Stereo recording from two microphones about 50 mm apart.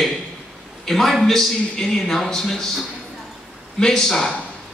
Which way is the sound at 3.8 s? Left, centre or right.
Centre.